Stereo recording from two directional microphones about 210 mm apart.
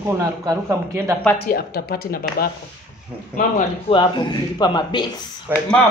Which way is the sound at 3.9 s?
20° left (ahead or behind).